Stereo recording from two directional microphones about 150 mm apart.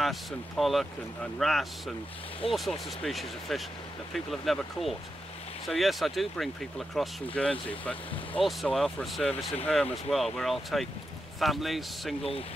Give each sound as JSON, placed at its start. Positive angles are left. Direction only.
{"t": 0.0, "sound": "speech", "side_deg": 0}
{"t": 12.2, "sound": "speech", "side_deg": 40}